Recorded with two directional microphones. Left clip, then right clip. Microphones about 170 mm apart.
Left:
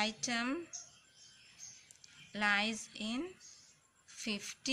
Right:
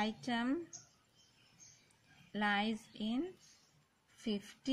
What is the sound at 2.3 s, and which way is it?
Speech, 40° right (ahead or behind).